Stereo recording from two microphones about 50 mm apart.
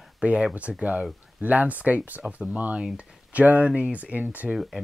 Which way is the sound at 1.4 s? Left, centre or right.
Right.